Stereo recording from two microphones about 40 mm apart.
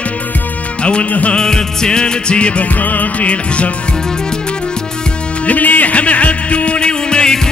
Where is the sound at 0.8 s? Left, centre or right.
Left.